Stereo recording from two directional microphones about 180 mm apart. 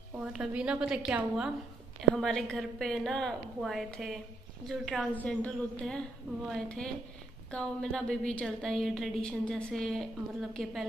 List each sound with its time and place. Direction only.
0.2 s a woman's voice: 5° right (ahead or behind)